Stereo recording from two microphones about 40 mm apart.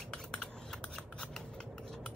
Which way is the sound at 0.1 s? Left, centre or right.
Centre.